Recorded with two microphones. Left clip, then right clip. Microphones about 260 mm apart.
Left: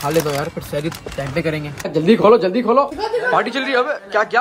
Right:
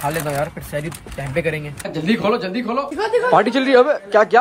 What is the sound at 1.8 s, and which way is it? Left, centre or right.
A man's voice, centre.